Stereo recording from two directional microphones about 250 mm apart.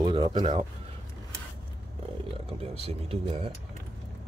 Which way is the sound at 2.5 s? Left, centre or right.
Right.